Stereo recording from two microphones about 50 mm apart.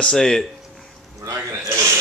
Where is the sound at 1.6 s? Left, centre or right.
Right.